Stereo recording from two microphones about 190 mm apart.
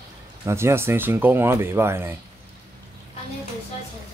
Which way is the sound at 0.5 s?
15° right (ahead or behind).